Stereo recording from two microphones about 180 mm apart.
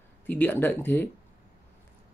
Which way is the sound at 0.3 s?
10° left (ahead or behind).